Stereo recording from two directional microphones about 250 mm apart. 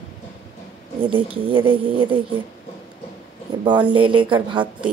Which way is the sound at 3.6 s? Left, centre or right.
Centre.